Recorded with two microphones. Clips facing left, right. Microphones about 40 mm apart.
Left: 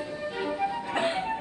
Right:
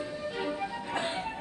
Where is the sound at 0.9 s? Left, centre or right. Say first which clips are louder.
Left 4 dB; left.